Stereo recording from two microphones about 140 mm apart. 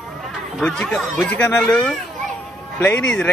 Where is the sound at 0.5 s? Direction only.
5° left (ahead or behind).